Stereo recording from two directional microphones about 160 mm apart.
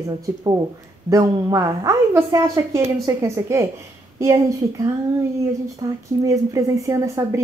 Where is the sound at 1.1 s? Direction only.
20° right (ahead or behind).